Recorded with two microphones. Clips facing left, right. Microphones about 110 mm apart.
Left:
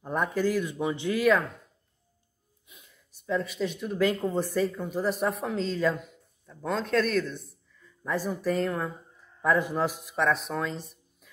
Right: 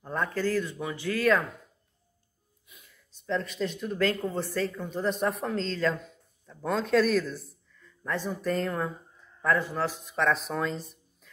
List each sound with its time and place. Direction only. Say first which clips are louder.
0.0 s speech: left 2 dB; 15° left (ahead or behind)
2.7 s a sound: left 1 dB; 20° left (ahead or behind)
3.3 s speech: left 1 dB; 5° left (ahead or behind)
4.0 s speech: left 2 dB; 15° left (ahead or behind)
6.4 s speech: right 1 dB; centre (ahead or behind)
9.4 s speech: left 2 dB; 15° left (ahead or behind)
10.0 s speech: even; 5° left (ahead or behind)